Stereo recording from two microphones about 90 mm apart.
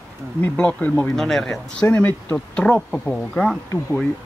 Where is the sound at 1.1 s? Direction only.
5° left (ahead or behind).